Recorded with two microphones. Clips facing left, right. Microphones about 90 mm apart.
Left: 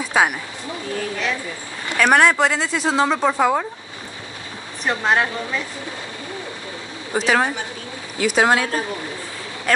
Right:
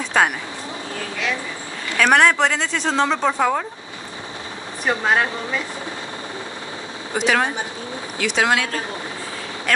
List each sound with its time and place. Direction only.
0.0 s a woman's voice: 5° left (ahead or behind)
2.0 s speech: 5° left (ahead or behind)
4.8 s speech: 5° right (ahead or behind)
7.2 s speech: centre (ahead or behind)
8.4 s speech: 30° left (ahead or behind)